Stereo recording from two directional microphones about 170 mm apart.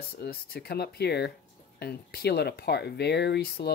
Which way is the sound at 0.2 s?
70° left (ahead or behind).